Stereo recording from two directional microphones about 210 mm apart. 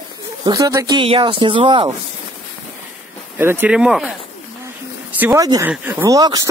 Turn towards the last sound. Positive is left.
turn(degrees=-20)  # may be behind; listen again after turning